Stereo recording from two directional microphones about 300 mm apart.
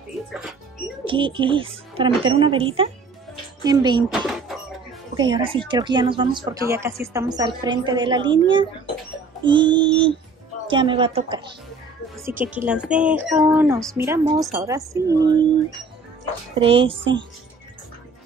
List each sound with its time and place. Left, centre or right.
0.3 s speech: centre
1.0 s speech: centre
5.1 s speech: centre
16.5 s speech: centre